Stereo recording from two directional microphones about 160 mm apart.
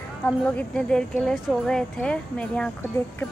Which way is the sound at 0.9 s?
5° left (ahead or behind).